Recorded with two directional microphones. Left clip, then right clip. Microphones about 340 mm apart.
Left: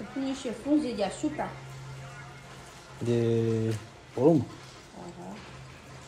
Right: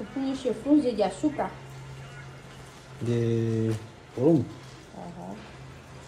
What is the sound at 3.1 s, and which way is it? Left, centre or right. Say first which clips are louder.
Speech: left 1 dB; centre.